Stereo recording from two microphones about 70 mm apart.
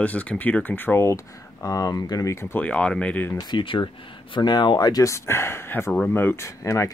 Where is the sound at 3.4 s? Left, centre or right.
Left.